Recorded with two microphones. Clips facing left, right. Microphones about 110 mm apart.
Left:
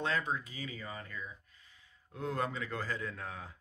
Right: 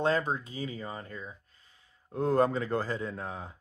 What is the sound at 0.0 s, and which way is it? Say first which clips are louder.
Speech: right 6 dB; 35° right (ahead or behind).